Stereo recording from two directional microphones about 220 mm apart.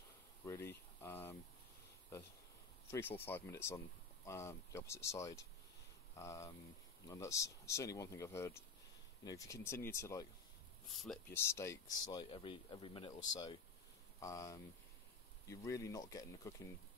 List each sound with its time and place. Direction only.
0.5 s boiling: 10° left (ahead or behind)
2.9 s speech: 10° left (ahead or behind)
10.9 s speech: centre (ahead or behind)
11.3 s speech: 15° left (ahead or behind)